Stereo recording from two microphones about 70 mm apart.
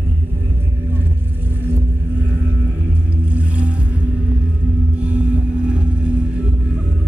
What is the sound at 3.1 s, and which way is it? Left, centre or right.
Vehicle, centre.